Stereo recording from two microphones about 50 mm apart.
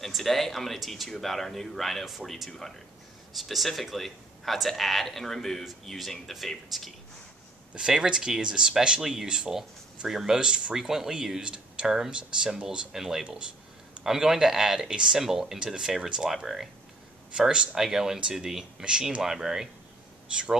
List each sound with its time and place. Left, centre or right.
0.0 s speech: centre
7.7 s speech: centre
17.3 s speech: centre